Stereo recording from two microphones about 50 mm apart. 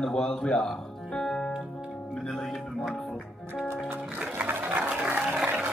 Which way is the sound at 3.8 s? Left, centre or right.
Right.